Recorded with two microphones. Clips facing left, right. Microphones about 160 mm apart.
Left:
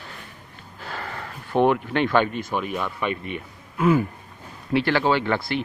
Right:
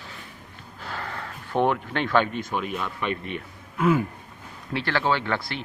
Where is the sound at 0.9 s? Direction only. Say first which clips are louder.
Left 1 dB; 5° left (ahead or behind).